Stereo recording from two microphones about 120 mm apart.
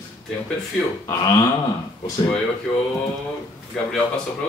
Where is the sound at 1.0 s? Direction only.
25° left (ahead or behind).